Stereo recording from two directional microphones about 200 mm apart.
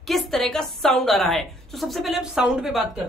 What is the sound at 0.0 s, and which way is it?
A woman's voice, centre (ahead or behind).